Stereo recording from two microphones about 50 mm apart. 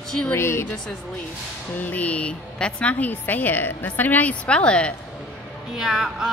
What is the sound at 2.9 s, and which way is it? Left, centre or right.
A woman's voice, left.